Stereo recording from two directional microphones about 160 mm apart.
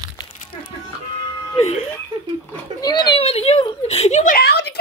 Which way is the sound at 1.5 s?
40° left (ahead or behind).